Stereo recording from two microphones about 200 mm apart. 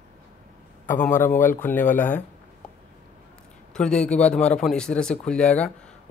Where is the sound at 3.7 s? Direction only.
5° left (ahead or behind).